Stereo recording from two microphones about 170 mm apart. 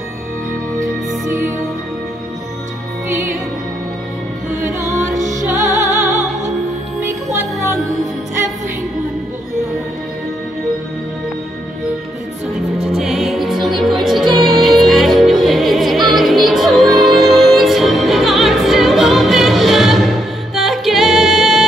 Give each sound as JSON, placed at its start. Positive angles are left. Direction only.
{"t": 4.6, "sound": "music", "side_deg": -15}
{"t": 5.2, "sound": "music", "side_deg": -45}
{"t": 12.9, "sound": "music", "side_deg": 0}